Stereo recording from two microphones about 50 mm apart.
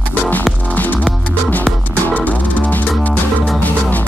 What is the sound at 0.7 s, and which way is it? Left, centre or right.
Music, left.